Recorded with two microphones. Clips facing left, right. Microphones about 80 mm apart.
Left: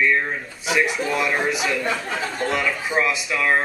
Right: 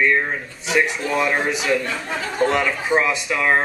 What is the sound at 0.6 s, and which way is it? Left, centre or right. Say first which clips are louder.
A man's voice: right 1 dB; centre.